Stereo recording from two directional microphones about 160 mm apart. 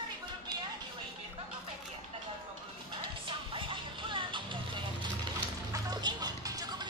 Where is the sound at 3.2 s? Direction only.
30° right (ahead or behind).